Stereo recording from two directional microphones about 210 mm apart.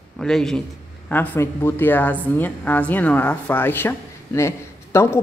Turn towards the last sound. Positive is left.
turn(degrees=15)  # may be behind; listen again after turning